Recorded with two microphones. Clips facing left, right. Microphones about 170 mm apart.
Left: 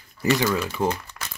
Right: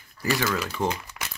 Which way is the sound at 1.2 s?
5° right (ahead or behind).